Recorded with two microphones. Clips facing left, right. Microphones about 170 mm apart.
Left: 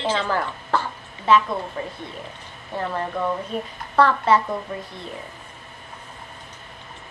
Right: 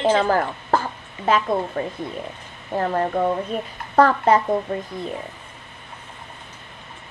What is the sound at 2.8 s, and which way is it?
A woman's voice, 50° right (ahead or behind).